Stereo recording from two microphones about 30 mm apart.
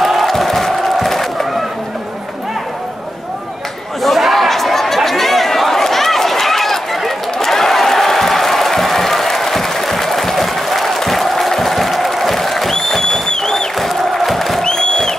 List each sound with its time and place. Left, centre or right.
0.0 s crowd: centre
4.0 s chatter: centre
7.1 s a sound: centre
12.7 s crowd: centre
13.7 s music: centre
14.6 s a sound: left